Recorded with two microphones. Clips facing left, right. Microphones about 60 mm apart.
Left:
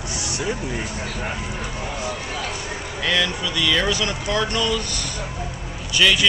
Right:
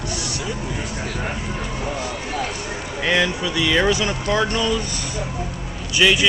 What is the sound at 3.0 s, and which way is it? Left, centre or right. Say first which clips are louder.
Speech: right 3 dB; right.